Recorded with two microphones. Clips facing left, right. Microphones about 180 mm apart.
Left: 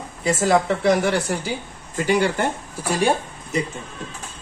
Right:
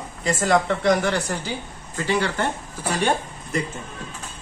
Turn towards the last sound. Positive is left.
turn(degrees=10)  # may be behind; listen again after turning